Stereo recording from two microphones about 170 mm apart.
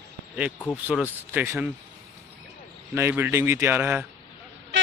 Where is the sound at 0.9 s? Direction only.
Centre (ahead or behind).